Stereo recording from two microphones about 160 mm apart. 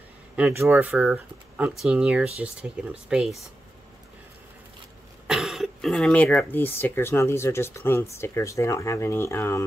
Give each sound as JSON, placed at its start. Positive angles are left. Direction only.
{"t": 0.4, "sound": "speech", "side_deg": -15}
{"t": 5.2, "sound": "speech", "side_deg": -5}